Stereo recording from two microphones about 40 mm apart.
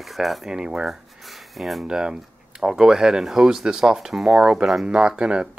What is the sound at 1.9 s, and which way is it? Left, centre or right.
Speech, right.